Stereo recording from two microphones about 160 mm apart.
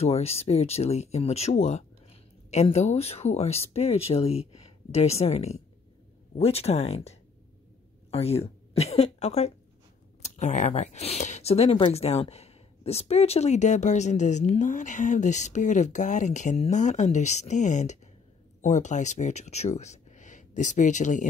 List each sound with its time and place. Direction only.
0.0 s speech: 40° left (ahead or behind)